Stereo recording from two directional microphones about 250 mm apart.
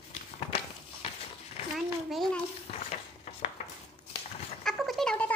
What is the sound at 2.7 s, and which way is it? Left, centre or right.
Stir, left.